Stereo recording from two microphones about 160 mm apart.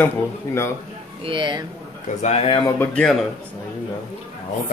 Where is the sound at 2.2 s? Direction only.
40° left (ahead or behind).